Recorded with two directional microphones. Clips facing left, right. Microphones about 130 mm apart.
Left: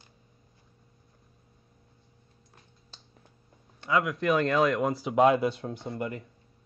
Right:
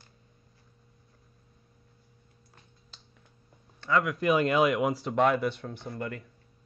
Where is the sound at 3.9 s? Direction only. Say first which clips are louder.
Even; centre (ahead or behind).